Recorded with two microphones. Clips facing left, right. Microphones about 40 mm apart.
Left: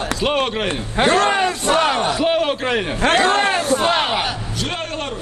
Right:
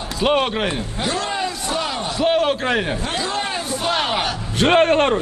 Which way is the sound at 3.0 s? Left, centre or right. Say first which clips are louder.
Left 8 dB; left.